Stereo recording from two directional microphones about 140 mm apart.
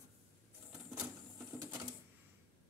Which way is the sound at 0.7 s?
5° right (ahead or behind).